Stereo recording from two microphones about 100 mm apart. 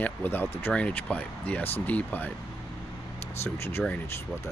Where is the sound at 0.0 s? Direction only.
20° left (ahead or behind).